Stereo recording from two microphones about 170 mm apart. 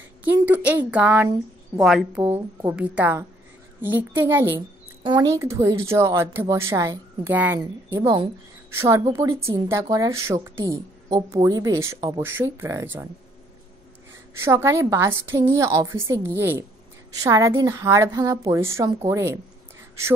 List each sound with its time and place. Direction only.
0.2 s speech: 10° right (ahead or behind)
4.6 s speech: 25° right (ahead or behind)
7.9 s a woman's voice: 25° right (ahead or behind)
14.4 s a woman's voice: 15° right (ahead or behind)